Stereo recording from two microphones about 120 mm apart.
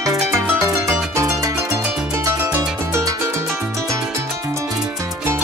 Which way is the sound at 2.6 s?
25° right (ahead or behind).